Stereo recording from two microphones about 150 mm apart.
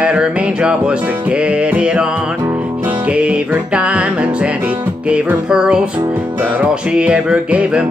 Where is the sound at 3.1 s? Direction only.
5° right (ahead or behind).